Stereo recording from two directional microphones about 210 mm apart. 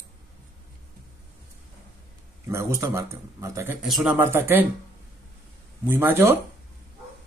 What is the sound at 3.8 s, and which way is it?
Speech, centre (ahead or behind).